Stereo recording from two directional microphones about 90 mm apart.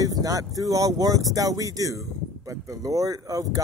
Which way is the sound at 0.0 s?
40° right (ahead or behind).